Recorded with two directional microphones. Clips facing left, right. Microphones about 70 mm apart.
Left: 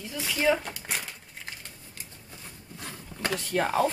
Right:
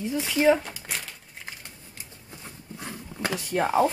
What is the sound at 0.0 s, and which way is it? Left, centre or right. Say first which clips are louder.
Speech: right 5 dB; right.